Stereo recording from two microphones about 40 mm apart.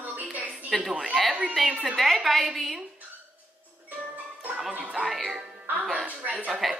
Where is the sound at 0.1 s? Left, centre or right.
Right.